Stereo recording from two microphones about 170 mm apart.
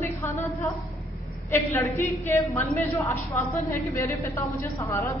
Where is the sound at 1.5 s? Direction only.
15° left (ahead or behind).